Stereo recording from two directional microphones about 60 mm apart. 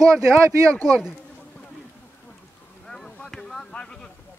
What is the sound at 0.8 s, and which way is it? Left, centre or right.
Speech, right.